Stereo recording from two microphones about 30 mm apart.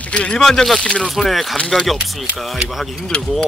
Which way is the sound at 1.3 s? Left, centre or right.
Centre.